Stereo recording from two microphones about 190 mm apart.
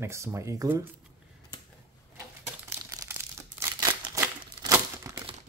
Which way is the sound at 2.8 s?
15° right (ahead or behind).